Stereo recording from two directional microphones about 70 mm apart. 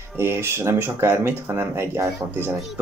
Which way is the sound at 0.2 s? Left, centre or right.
Right.